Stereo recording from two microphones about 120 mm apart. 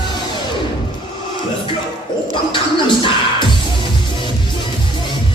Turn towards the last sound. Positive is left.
turn(degrees=45)  # may be behind; listen again after turning